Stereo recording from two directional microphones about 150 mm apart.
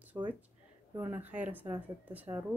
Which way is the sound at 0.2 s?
15° right (ahead or behind).